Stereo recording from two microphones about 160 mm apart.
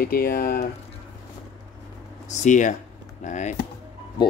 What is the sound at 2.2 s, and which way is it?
Speech, 50° left (ahead or behind).